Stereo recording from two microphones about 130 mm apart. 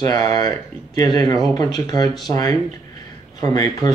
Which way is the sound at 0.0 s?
30° left (ahead or behind).